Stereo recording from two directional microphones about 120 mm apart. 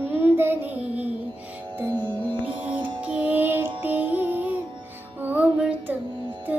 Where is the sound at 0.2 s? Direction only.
15° right (ahead or behind).